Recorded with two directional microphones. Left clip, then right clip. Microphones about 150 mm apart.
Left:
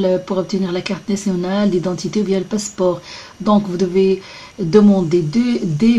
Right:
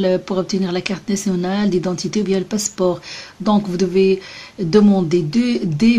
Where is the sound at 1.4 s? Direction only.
25° right (ahead or behind).